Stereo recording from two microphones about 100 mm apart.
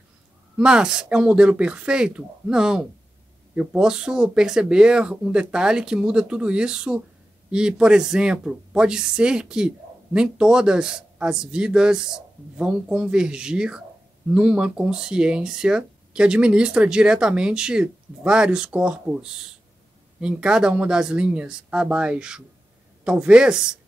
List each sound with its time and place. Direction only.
0.6 s speech: 10° right (ahead or behind)